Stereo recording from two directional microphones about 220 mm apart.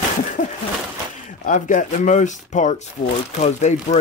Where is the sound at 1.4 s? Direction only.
35° left (ahead or behind).